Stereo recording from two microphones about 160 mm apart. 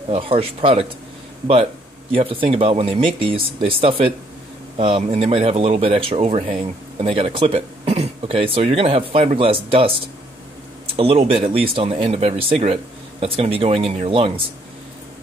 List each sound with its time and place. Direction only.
0.1 s speech: 35° right (ahead or behind)
2.1 s speech: 35° right (ahead or behind)
11.0 s speech: 35° right (ahead or behind)